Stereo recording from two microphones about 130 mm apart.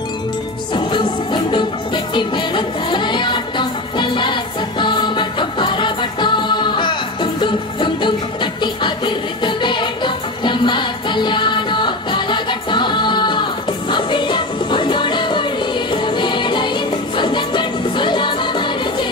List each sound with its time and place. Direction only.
0.7 s music: 40° left (ahead or behind)